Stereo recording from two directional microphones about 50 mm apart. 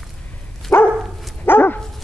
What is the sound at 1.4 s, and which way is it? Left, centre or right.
Dog, left.